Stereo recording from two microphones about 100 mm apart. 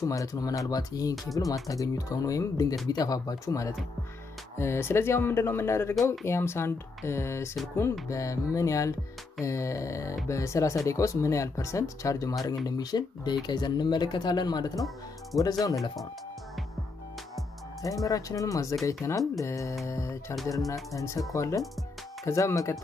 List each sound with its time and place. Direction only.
0.0 s speech: 35° left (ahead or behind)
17.8 s speech: 35° left (ahead or behind)